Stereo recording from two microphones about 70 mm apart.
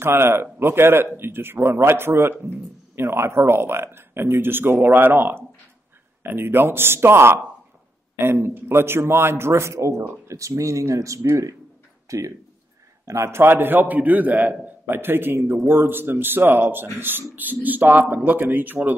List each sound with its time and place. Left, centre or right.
0.0 s a man's voice: right